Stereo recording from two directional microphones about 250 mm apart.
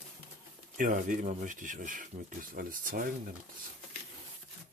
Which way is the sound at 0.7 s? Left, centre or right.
Right.